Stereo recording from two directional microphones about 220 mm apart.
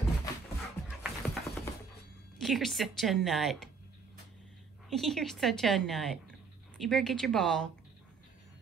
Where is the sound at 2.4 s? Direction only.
Centre (ahead or behind).